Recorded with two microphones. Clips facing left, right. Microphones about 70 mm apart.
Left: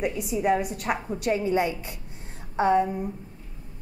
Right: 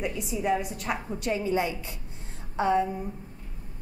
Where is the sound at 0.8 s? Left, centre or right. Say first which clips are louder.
Left 3 dB; centre.